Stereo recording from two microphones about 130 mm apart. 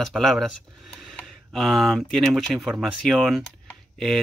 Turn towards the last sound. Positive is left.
turn(degrees=0)  # may be behind; listen again after turning